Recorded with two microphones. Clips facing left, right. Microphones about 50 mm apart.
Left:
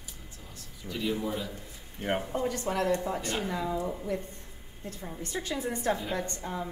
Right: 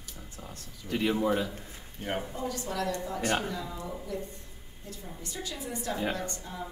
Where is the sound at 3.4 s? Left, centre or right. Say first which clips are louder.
Left 5 dB; left.